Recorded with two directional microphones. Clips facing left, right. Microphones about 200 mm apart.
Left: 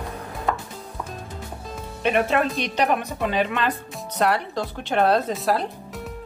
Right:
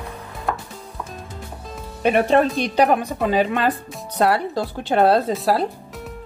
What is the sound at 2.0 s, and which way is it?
Speech, 35° right (ahead or behind).